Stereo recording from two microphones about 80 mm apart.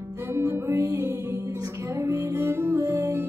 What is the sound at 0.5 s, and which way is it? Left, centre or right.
Music, right.